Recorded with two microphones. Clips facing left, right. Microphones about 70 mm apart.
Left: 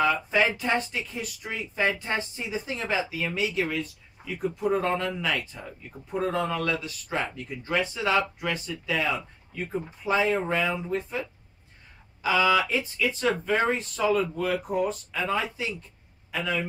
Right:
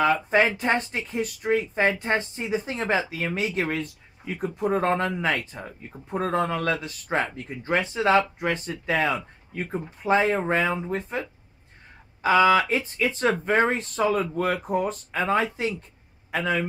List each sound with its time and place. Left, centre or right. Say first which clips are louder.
0.5 s a man's voice: right 2 dB; right